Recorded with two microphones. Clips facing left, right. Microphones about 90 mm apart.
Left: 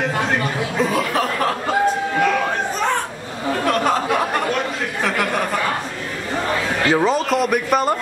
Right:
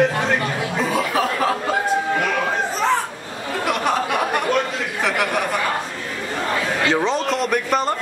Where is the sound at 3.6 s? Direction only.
10° right (ahead or behind).